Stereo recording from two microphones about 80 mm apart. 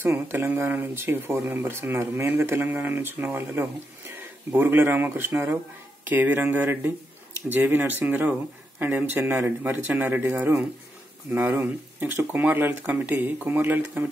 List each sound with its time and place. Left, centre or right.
0.0 s speech: right